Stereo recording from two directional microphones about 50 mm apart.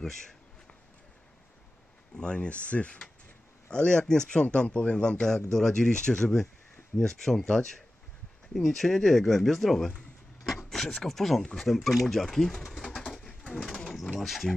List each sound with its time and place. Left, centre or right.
0.0 s a sound: centre
2.1 s speech: centre
5.5 s speech: centre
12.9 s bird: centre
13.5 s speech: centre